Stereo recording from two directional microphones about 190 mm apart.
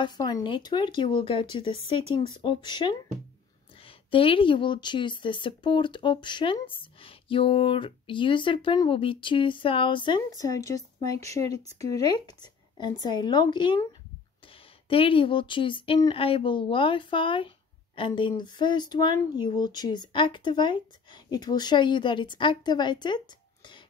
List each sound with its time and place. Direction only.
0.0 s a woman's voice: 20° left (ahead or behind)
14.9 s speech: 30° left (ahead or behind)